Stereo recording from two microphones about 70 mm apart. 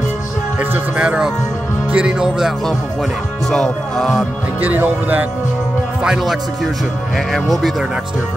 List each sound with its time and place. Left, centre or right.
0.6 s speech: centre
3.4 s speech: centre
4.6 s speech: right
6.0 s speech: centre